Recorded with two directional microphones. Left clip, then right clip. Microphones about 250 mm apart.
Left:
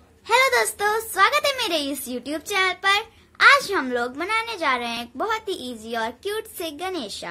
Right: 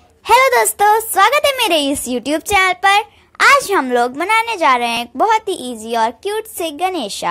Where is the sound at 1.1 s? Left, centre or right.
Right.